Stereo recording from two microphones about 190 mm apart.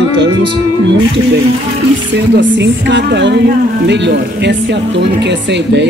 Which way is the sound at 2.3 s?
65° right (ahead or behind).